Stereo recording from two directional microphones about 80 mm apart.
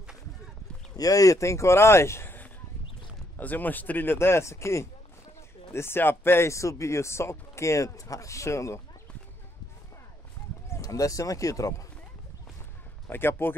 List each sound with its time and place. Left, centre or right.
0.9 s speech: left
10.7 s speech: left
13.1 s speech: left